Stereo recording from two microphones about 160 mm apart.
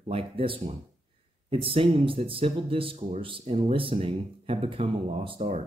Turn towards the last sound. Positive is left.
turn(degrees=-40)  # may be behind; listen again after turning